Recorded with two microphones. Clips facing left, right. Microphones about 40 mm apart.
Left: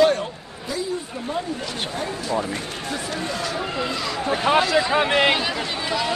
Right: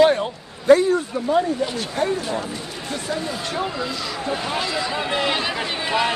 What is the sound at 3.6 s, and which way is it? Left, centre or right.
Speech, left.